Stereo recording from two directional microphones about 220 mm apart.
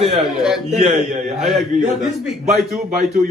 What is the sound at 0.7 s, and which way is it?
Speech, 30° right (ahead or behind).